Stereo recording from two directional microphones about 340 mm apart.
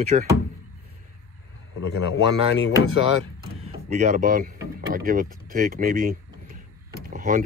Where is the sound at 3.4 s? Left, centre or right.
Right.